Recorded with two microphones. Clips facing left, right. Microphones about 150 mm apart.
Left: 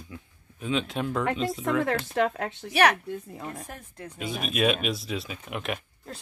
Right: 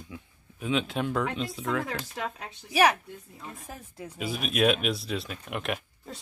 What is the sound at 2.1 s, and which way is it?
Speech, 75° left (ahead or behind).